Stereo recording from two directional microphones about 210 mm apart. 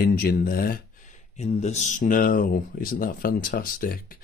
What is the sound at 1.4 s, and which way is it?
Speech, 30° left (ahead or behind).